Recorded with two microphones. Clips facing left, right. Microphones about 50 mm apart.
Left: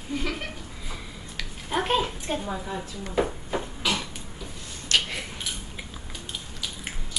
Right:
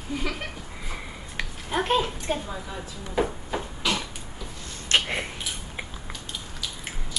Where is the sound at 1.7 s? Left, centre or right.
Centre.